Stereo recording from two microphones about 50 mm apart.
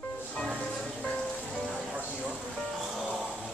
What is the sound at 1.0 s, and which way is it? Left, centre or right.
Music, left.